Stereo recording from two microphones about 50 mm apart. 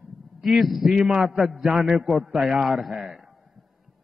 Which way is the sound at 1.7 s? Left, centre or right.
Centre.